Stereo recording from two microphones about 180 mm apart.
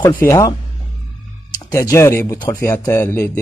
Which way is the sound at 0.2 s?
15° left (ahead or behind).